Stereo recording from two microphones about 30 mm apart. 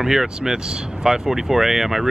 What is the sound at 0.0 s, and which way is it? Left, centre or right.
Speech, centre.